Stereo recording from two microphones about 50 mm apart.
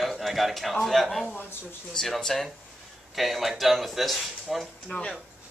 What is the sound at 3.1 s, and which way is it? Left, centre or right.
Speech, centre.